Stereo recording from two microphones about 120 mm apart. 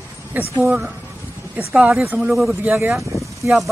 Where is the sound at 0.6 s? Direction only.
10° right (ahead or behind).